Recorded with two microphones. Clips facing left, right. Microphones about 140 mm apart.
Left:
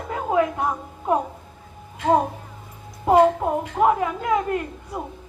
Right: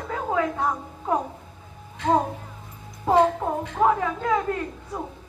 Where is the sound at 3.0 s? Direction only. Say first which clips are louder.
Left 3 dB; 15° left (ahead or behind).